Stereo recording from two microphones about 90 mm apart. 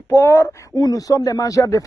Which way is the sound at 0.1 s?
35° left (ahead or behind).